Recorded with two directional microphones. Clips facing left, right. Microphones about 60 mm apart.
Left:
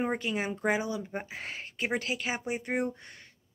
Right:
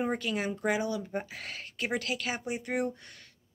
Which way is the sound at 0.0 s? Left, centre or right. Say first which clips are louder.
Even; left.